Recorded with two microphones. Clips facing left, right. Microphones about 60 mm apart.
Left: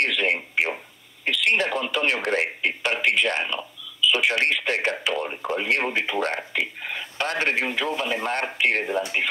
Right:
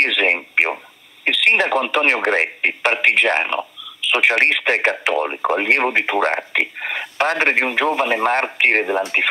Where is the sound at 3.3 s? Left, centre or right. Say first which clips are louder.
Right 7 dB; right.